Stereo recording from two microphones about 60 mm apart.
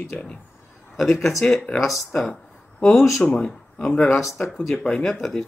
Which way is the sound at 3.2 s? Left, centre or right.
Centre.